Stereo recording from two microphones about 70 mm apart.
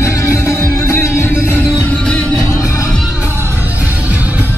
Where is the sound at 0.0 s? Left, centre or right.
Left.